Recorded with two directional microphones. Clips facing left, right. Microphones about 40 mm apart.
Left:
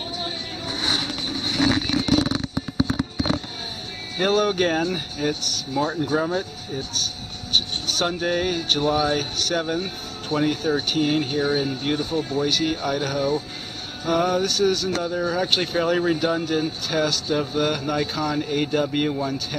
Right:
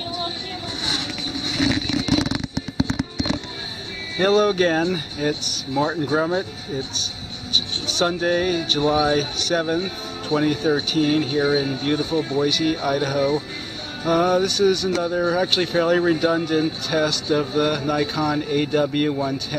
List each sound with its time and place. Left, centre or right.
4.2 s speech: centre
11.3 s speech: centre
12.4 s speech: centre